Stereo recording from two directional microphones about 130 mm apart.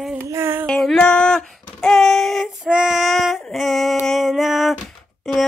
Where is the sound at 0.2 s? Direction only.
20° right (ahead or behind).